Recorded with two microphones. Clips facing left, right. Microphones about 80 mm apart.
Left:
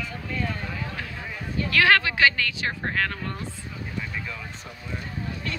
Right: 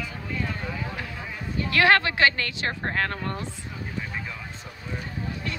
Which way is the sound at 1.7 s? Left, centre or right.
Right.